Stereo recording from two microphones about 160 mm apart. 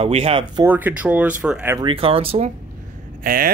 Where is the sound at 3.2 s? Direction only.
65° right (ahead or behind).